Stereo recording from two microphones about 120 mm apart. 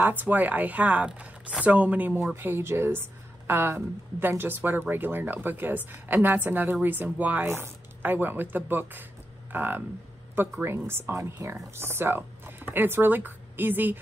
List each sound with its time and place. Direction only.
0.0 s a woman's voice: 15° right (ahead or behind)
10.9 s speech: 20° right (ahead or behind)